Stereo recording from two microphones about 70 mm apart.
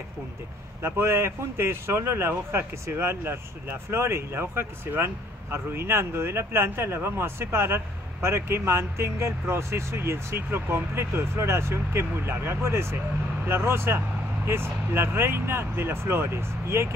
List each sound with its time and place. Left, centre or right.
0.8 s speech: right